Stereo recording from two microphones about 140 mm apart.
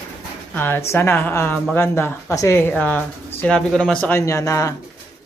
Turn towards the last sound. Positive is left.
turn(degrees=20)  # may be behind; listen again after turning